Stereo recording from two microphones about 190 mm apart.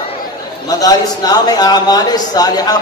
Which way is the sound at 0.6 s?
20° left (ahead or behind).